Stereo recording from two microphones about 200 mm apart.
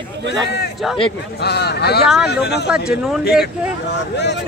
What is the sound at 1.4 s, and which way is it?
Speech, 55° left (ahead or behind).